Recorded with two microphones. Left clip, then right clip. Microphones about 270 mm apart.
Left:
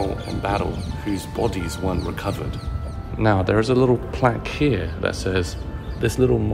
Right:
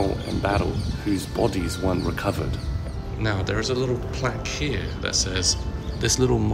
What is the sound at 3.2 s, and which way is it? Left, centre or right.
A man's voice, centre.